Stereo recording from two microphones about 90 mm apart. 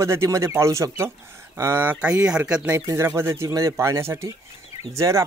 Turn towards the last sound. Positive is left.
turn(degrees=-35)  # may be behind; listen again after turning